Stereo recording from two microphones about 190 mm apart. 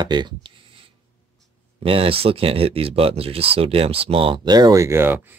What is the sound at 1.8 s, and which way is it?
Speech, 30° right (ahead or behind).